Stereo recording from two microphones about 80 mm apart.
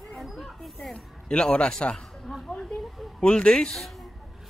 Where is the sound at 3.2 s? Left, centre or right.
Centre.